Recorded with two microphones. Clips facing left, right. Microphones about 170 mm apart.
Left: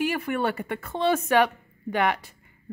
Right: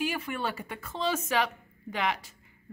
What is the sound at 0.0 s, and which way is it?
Speech, 60° left (ahead or behind).